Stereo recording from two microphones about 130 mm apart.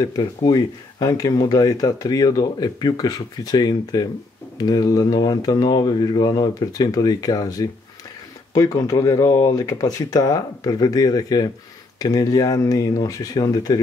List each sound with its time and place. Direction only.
0.0 s speech: 30° left (ahead or behind)